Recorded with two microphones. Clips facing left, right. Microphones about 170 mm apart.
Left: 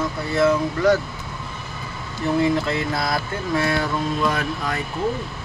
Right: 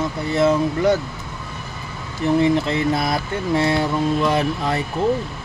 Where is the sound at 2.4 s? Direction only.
20° right (ahead or behind).